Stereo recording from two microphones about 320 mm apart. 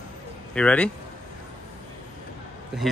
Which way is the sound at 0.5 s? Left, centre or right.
Centre.